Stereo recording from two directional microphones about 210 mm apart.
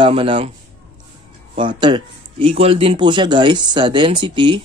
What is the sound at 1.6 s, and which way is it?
Speech, 25° right (ahead or behind).